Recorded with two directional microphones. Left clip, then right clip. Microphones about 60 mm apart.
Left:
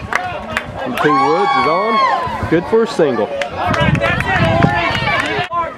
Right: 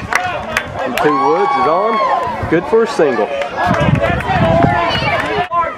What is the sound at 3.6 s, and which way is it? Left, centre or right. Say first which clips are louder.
Run: even; left.